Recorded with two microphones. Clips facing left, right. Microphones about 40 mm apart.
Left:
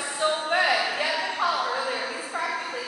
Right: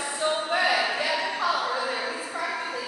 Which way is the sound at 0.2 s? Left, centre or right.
Left.